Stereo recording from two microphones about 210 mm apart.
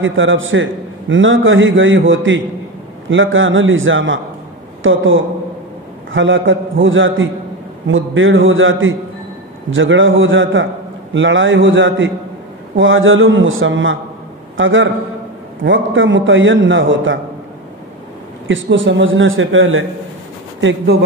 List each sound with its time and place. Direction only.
0.0 s a man's voice: 65° right (ahead or behind)
18.5 s a man's voice: 60° right (ahead or behind)
20.6 s speech: 50° right (ahead or behind)